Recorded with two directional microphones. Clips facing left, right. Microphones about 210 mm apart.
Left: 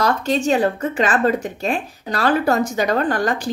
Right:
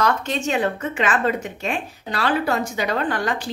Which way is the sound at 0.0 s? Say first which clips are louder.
Left 3 dB; 35° left (ahead or behind).